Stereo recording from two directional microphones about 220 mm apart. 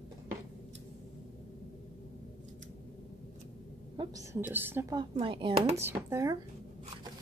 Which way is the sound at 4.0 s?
15° right (ahead or behind).